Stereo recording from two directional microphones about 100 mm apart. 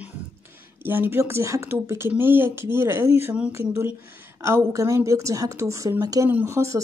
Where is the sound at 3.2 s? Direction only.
15° right (ahead or behind).